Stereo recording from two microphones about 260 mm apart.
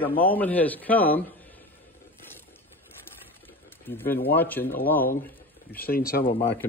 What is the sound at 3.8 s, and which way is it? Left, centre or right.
Speech, centre.